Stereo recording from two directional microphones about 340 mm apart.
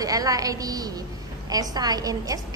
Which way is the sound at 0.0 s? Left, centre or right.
Centre.